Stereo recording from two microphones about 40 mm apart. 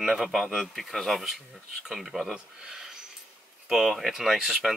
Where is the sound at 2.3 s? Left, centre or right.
Centre.